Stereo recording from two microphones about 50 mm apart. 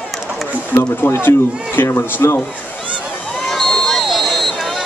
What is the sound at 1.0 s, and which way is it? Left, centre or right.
Speech, left.